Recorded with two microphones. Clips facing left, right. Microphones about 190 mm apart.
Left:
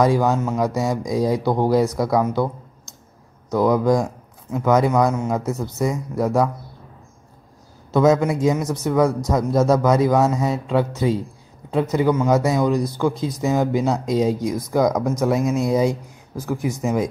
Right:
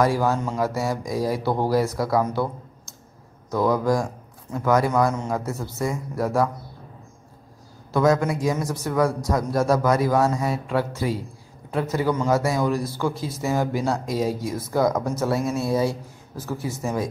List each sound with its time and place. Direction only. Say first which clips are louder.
0.0 s a man's voice: left 3 dB; 20° left (ahead or behind)
7.9 s a man's voice: left 4 dB; 20° left (ahead or behind)